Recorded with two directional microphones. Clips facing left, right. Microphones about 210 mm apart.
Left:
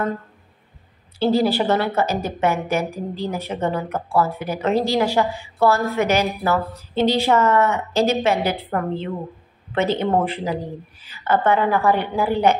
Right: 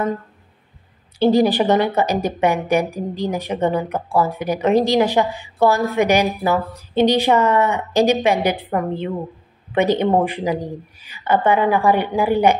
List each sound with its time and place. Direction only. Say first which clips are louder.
1.2 s speech: right 3 dB; 15° right (ahead or behind)